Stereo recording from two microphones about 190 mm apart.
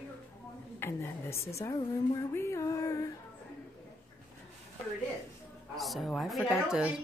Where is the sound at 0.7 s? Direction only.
10° left (ahead or behind).